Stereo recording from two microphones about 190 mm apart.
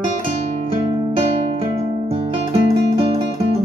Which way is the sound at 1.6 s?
30° right (ahead or behind).